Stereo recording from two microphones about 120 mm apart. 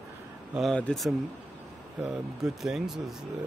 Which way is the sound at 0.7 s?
10° left (ahead or behind).